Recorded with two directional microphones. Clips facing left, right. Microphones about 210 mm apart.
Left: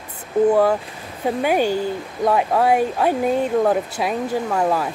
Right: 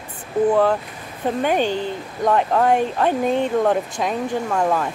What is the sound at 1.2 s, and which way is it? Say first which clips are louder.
Speech: left 1 dB; 10° left (ahead or behind).